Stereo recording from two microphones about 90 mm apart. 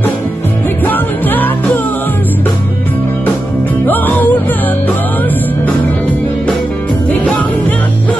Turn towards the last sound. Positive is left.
turn(degrees=15)  # may be behind; listen again after turning